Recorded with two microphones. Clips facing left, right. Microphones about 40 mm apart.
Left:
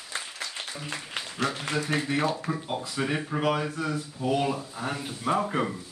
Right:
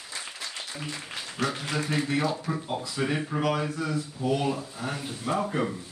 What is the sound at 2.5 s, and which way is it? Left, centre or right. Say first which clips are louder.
A man's voice: even; centre.